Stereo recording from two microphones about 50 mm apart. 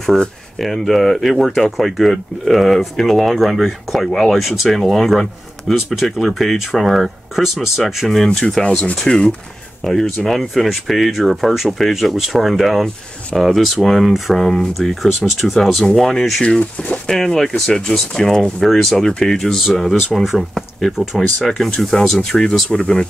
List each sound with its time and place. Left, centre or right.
0.6 s speech: centre
16.4 s speech: left
17.0 s speech: centre
18.6 s speech: centre
20.2 s speech: centre
21.6 s speech: centre